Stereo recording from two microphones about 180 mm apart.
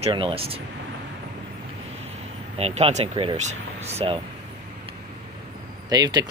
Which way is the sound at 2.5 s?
35° right (ahead or behind).